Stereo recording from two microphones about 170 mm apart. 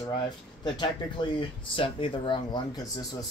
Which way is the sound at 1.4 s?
30° left (ahead or behind).